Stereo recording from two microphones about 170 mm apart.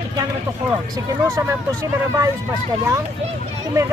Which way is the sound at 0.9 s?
15° right (ahead or behind).